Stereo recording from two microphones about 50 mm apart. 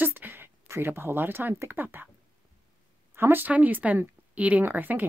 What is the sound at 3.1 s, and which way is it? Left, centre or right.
Speech, right.